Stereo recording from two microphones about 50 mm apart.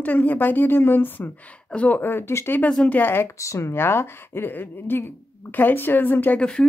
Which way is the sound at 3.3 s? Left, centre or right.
Left.